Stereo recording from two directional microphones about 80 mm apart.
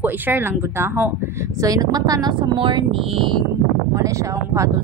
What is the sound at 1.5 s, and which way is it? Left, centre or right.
Speech, right.